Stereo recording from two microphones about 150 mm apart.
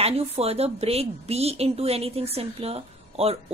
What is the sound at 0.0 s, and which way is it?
A woman's voice, 40° right (ahead or behind).